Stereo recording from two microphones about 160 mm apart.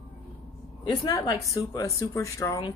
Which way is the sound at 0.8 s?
25° left (ahead or behind).